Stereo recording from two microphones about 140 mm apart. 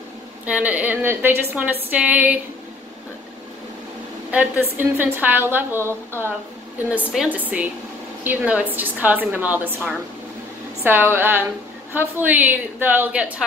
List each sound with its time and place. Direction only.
0.5 s a woman's voice: 10° right (ahead or behind)
4.3 s a woman's voice: 15° right (ahead or behind)